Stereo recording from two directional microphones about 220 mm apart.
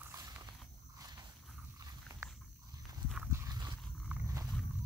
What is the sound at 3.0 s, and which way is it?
Horse, 5° right (ahead or behind).